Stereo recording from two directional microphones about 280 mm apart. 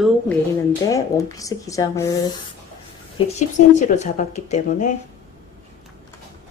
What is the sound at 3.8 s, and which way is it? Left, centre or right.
A woman's voice, left.